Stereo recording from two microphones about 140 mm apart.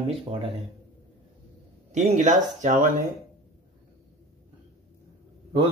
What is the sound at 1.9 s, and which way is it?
Speech, 55° right (ahead or behind).